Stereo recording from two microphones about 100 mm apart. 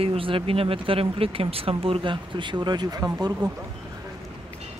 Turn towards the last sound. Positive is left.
turn(degrees=-45)  # may be behind; listen again after turning